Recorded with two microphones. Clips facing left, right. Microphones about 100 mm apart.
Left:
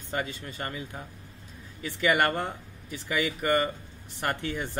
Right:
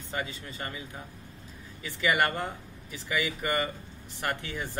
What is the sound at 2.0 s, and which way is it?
Speech, 45° left (ahead or behind).